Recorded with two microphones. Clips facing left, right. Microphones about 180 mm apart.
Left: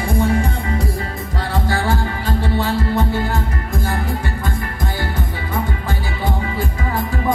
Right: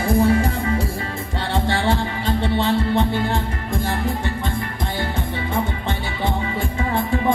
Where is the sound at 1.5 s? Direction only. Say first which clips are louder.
Even; 25° right (ahead or behind).